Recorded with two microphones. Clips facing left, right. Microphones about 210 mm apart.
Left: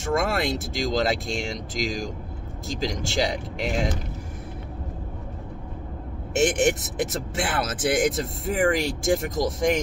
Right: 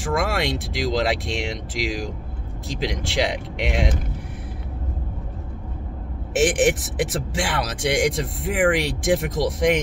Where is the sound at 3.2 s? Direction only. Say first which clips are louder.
Right 2 dB; centre (ahead or behind).